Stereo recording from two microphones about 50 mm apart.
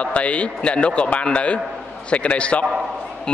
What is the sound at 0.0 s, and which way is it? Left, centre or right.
A man's voice, left.